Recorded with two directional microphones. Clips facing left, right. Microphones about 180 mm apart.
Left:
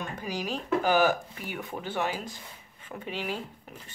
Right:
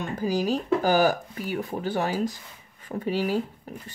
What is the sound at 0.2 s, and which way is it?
Speech, 35° right (ahead or behind).